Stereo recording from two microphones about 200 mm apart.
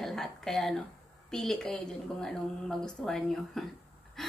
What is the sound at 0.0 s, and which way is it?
A woman's voice, centre (ahead or behind).